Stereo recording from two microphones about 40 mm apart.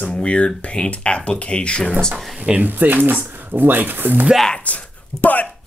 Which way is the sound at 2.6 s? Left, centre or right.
Right.